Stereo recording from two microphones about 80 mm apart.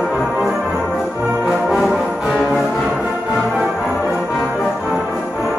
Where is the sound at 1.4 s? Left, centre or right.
Centre.